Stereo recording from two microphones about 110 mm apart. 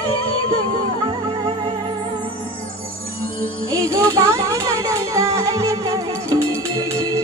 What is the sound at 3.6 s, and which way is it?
Music, 30° right (ahead or behind).